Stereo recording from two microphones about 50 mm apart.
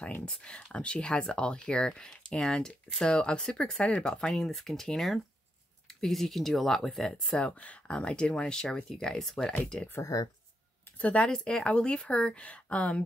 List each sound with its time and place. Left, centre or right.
0.2 s speech: left
7.3 s speech: left; by 9.5 s centre
11.0 s speech: left
11.2 s speech: centre